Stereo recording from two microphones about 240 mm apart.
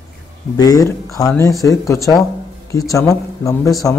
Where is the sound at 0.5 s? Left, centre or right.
Centre.